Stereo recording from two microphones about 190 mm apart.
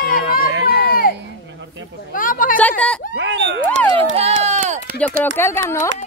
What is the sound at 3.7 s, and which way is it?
Run, 35° right (ahead or behind).